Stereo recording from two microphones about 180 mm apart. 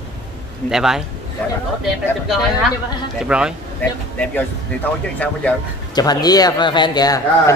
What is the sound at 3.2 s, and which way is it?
Speech, 5° right (ahead or behind).